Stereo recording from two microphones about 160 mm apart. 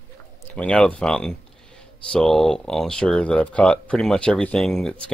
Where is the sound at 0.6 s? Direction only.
5° left (ahead or behind).